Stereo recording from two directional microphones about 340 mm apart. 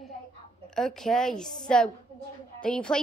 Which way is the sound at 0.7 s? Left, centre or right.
Centre.